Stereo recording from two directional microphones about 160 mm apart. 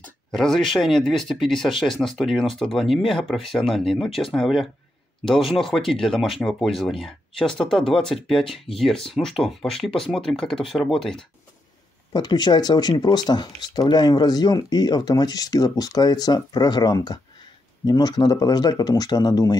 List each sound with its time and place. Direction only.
0.0 s speech: 5° left (ahead or behind)
12.1 s speech: 25° left (ahead or behind)